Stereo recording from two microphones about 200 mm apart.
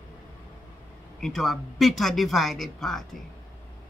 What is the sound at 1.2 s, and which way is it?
Speech, centre (ahead or behind).